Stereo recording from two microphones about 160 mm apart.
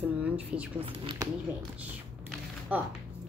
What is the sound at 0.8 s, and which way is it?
Speech, 30° right (ahead or behind).